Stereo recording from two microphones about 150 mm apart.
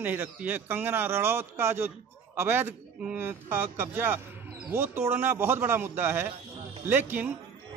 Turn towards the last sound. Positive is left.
turn(degrees=-15)  # may be behind; listen again after turning